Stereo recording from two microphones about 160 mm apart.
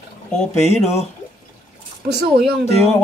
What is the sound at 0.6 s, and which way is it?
Speech, 40° left (ahead or behind).